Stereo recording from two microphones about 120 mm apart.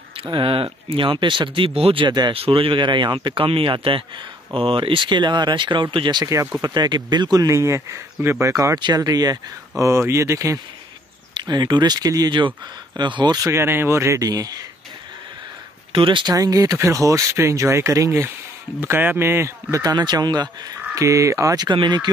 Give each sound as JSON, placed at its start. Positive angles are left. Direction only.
{"t": 0.2, "sound": "speech", "side_deg": -45}
{"t": 2.0, "sound": "speech", "side_deg": -40}
{"t": 2.3, "sound": "speech", "side_deg": -50}
{"t": 6.2, "sound": "speech", "side_deg": -25}
{"t": 8.7, "sound": "speech", "side_deg": -35}
{"t": 11.3, "sound": "speech", "side_deg": -40}
{"t": 13.5, "sound": "speech", "side_deg": -20}
{"t": 15.9, "sound": "speech", "side_deg": -45}
{"t": 16.3, "sound": "speech", "side_deg": -30}
{"t": 21.6, "sound": "speech", "side_deg": -40}